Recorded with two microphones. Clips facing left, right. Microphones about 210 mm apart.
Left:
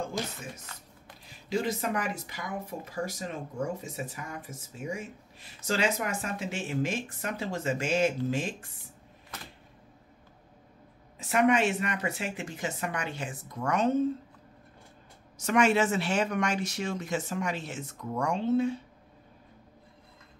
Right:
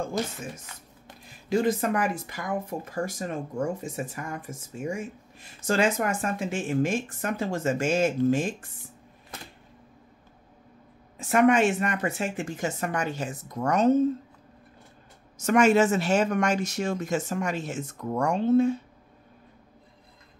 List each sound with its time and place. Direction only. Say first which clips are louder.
1.5 s speech: right 6 dB; 50° right (ahead or behind)
11.1 s speech: right 4 dB; 50° right (ahead or behind)
15.3 s speech: right 5 dB; 45° right (ahead or behind)